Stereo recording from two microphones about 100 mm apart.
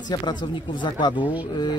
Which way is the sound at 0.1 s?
50° left (ahead or behind).